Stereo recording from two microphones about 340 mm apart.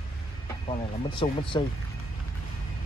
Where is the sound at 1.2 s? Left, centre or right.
Centre.